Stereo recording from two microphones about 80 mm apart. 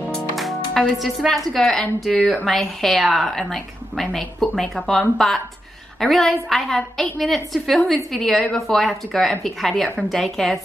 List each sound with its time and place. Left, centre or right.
0.1 s a woman's voice: centre